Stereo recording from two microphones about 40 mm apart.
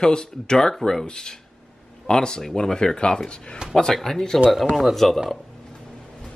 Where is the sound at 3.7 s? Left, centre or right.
Centre.